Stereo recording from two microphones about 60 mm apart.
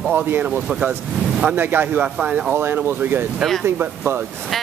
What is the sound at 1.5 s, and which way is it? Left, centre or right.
Speech, right.